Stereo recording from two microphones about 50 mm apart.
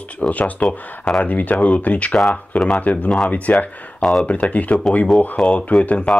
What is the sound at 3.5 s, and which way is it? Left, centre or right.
Speech, centre.